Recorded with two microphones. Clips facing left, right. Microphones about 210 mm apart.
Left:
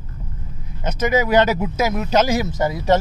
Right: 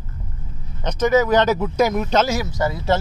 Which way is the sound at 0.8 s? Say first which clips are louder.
Right 2 dB; 10° left (ahead or behind).